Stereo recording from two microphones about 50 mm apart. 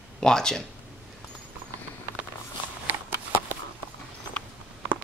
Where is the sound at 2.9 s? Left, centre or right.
Right.